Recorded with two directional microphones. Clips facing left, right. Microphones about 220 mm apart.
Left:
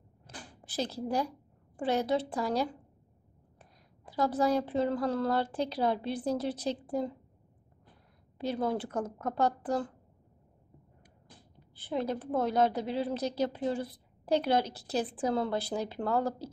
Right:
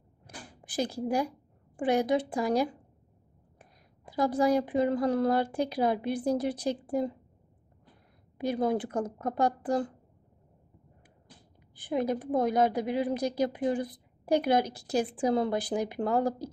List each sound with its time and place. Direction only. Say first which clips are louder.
0.3 s a sound: right 1 dB; 10° right (ahead or behind)
0.6 s a woman's voice: right 3 dB; 15° right (ahead or behind)
8.4 s a woman's voice: right 3 dB; 15° right (ahead or behind)
11.7 s a woman's voice: right 3 dB; 15° right (ahead or behind)